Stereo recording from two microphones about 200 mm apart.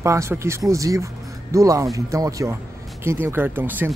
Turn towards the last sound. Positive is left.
turn(degrees=-10)  # may be behind; listen again after turning